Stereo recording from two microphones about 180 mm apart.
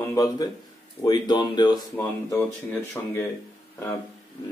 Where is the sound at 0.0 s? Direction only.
20° left (ahead or behind).